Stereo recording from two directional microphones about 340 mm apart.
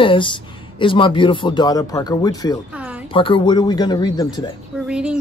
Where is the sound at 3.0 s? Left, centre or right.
Centre.